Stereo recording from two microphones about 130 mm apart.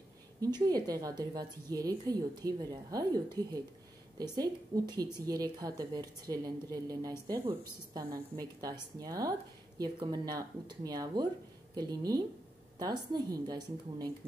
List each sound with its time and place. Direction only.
0.4 s a woman's voice: 30° right (ahead or behind)